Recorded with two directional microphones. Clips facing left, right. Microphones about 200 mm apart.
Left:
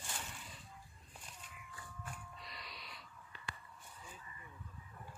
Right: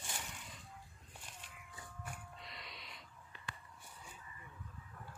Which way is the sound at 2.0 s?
25° right (ahead or behind).